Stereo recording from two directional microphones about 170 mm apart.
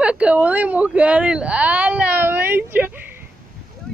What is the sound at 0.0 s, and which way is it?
Speech, 5° right (ahead or behind).